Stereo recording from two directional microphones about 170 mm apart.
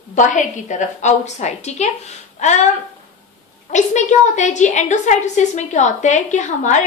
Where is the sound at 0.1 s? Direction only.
45° left (ahead or behind).